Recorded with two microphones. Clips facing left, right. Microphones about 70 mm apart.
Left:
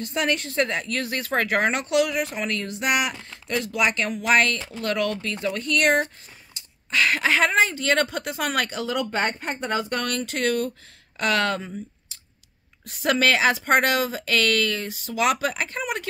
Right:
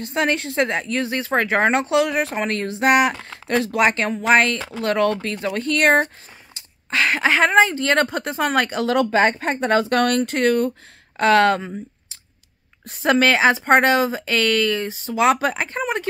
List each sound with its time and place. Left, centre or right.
0.0 s speech: right
4.6 s speech: right
4.8 s speech: right
8.9 s speech: right
10.0 s speech: right
12.8 s speech: right